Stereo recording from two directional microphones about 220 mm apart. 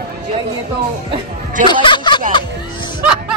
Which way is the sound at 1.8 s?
20° left (ahead or behind).